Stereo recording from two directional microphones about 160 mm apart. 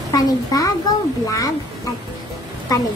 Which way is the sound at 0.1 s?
20° left (ahead or behind).